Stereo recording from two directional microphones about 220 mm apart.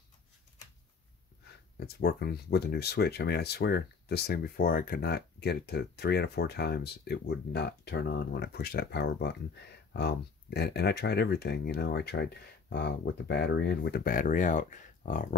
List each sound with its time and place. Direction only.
1.8 s speech: 45° left (ahead or behind)